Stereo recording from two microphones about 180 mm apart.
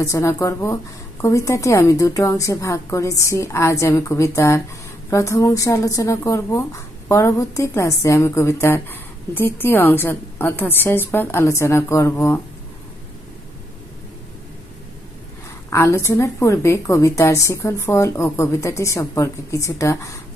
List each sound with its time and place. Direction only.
0.0 s a woman's voice: 15° left (ahead or behind)
15.7 s a woman's voice: 15° left (ahead or behind)